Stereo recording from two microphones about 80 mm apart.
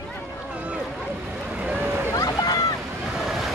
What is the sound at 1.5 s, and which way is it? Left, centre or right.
Boat, centre.